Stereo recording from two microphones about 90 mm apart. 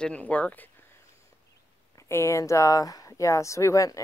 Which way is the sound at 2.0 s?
30° left (ahead or behind).